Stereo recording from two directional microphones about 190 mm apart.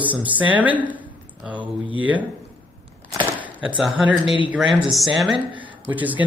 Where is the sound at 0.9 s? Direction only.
10° right (ahead or behind).